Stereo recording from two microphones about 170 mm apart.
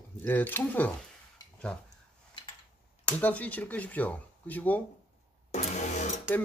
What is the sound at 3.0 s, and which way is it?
Speech, 10° left (ahead or behind).